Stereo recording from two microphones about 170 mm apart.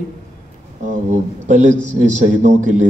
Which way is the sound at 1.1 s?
45° right (ahead or behind).